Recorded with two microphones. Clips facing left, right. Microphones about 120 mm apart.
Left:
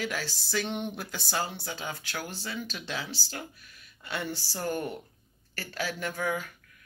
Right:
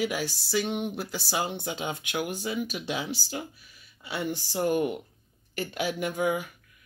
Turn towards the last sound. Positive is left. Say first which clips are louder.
# right 4 dB
turn(degrees=-15)  # may be behind; listen again after turning